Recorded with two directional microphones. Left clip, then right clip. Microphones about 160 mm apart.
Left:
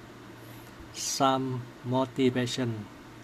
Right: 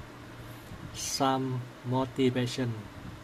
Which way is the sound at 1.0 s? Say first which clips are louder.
Left 3 dB; 10° left (ahead or behind).